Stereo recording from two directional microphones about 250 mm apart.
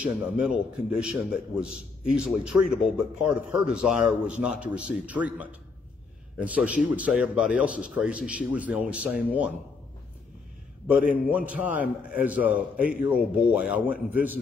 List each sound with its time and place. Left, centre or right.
0.2 s a man's voice: centre
10.9 s a man's voice: centre